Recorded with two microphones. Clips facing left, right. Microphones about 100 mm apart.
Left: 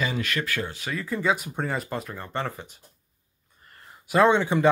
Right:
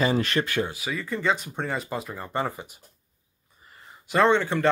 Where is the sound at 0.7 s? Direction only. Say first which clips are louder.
Even; 5° right (ahead or behind).